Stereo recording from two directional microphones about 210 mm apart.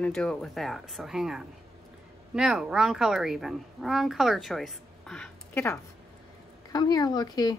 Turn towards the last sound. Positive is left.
turn(degrees=20)  # may be behind; listen again after turning